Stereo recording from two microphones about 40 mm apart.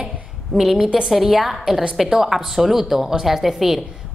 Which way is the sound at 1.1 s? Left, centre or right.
Centre.